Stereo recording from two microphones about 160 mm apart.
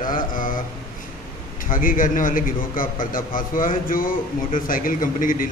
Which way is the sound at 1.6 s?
60° left (ahead or behind).